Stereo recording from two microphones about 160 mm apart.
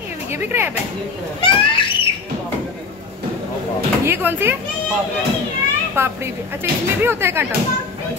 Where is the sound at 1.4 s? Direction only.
30° left (ahead or behind).